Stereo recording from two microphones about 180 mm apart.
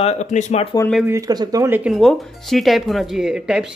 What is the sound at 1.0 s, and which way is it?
Speech, 15° right (ahead or behind).